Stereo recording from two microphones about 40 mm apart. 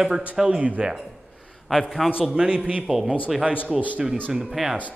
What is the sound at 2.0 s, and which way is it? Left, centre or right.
Speech, centre.